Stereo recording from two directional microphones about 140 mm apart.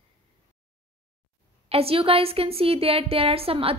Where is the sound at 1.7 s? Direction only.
45° right (ahead or behind).